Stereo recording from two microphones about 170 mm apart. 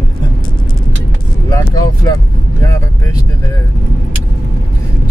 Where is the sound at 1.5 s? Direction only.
20° left (ahead or behind).